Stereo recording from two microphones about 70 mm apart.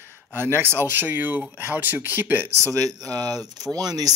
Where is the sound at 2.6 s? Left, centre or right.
Right.